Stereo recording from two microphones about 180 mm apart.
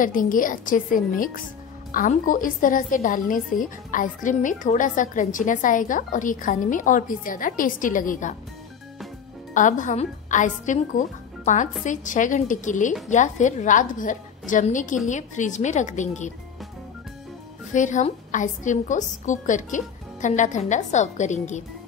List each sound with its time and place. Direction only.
0.0 s a woman's voice: 50° left (ahead or behind)
9.5 s a woman's voice: 45° left (ahead or behind)
17.7 s a woman's voice: 45° left (ahead or behind)